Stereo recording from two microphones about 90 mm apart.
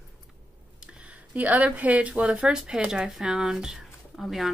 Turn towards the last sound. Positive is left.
turn(degrees=-5)  # may be behind; listen again after turning